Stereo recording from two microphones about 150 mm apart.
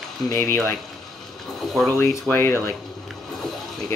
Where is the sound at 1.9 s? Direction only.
20° left (ahead or behind).